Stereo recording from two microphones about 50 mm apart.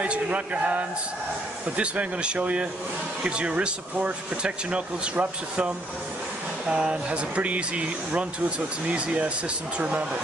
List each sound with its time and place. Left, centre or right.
0.0 s speech: right
6.8 s speech: right